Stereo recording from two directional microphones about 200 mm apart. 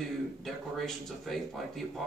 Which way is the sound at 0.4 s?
Centre (ahead or behind).